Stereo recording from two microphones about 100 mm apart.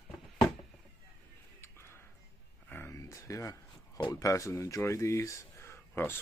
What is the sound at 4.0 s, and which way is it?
Speech, 35° left (ahead or behind).